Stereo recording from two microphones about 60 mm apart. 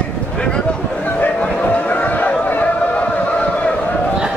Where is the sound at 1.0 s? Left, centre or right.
Left.